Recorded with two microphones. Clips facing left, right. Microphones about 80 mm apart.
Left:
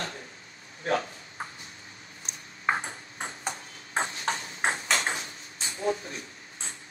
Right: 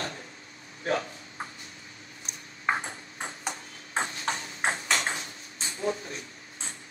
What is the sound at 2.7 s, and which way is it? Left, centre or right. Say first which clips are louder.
Ping: even; left.